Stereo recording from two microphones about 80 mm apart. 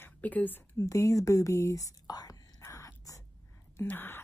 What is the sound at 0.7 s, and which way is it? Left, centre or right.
Speech, left.